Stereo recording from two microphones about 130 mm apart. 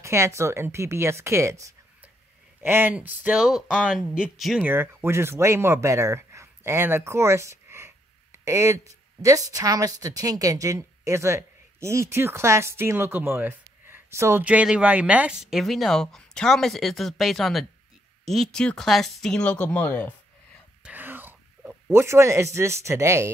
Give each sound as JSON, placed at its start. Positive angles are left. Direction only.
{"t": 0.0, "sound": "speech", "side_deg": -20}
{"t": 4.6, "sound": "speech", "side_deg": -20}
{"t": 20.8, "sound": "a sound", "side_deg": -15}